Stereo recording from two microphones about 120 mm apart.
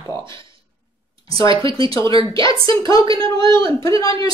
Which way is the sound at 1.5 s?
45° right (ahead or behind).